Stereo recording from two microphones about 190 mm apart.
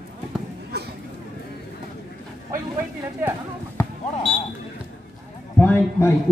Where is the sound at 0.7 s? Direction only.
60° right (ahead or behind).